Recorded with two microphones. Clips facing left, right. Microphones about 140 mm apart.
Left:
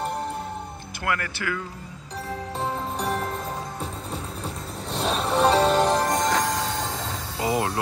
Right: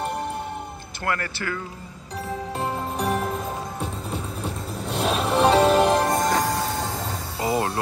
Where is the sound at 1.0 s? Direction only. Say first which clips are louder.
Right 1 dB; 30° right (ahead or behind).